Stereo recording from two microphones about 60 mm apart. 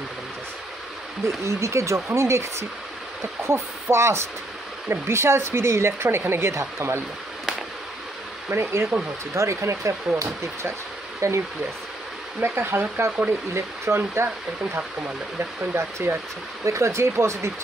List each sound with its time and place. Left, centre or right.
1.4 s speech: right
8.5 s speech: right
8.9 s speech: right
12.5 s speech: right
16.1 s speech: right